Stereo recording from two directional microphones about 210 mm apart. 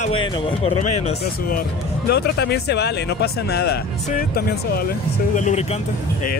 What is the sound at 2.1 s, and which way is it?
Speech, 50° left (ahead or behind).